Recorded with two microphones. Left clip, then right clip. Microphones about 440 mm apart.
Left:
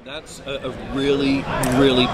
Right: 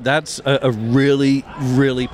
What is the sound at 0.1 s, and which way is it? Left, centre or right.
A man's voice, right.